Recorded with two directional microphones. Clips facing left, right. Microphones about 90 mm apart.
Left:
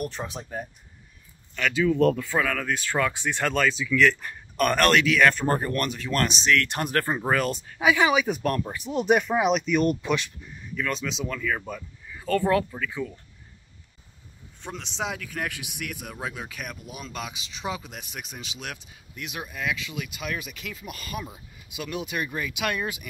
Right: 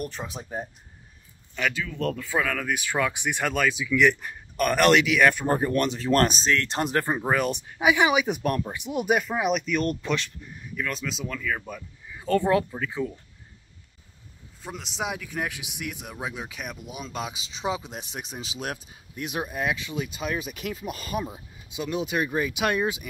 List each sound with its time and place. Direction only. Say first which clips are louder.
0.0 s speech: left 2 dB; centre (ahead or behind)
1.7 s speech: left 11 dB; 10° left (ahead or behind)
2.2 s speech: left 1 dB; centre (ahead or behind); by 5.9 s 20° right (ahead or behind)
5.9 s speech: right 5 dB; 35° right (ahead or behind)
6.5 s speech: left 1 dB; 25° right (ahead or behind); by 10.3 s 5° left (ahead or behind)
10.5 s speech: left 2 dB; 5° right (ahead or behind)
12.1 s speech: right 1 dB; 20° right (ahead or behind)
14.6 s speech: even; 5° right (ahead or behind); by 22.8 s 35° right (ahead or behind)